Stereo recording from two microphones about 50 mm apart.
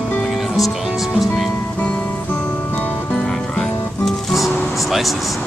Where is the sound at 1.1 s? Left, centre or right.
Centre.